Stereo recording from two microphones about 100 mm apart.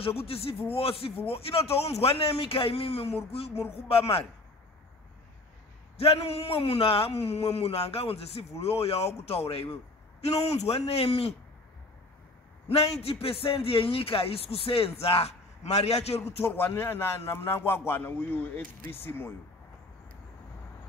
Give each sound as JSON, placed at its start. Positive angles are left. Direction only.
{"t": 0.0, "sound": "a man's voice", "side_deg": 75}
{"t": 3.8, "sound": "a man's voice", "side_deg": 70}
{"t": 5.9, "sound": "a man's voice", "side_deg": 75}
{"t": 12.6, "sound": "a man's voice", "side_deg": 85}
{"t": 16.4, "sound": "a man's voice", "side_deg": 20}